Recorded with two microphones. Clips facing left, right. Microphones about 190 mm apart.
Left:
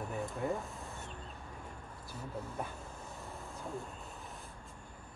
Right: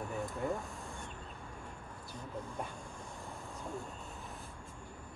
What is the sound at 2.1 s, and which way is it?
Speech, 10° left (ahead or behind).